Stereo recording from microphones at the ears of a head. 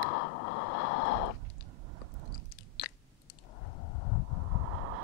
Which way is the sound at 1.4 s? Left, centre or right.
Right.